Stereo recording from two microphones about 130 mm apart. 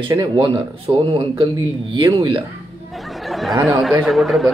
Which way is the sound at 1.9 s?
40° right (ahead or behind).